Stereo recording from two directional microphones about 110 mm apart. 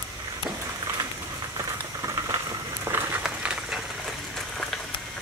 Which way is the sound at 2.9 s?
20° right (ahead or behind).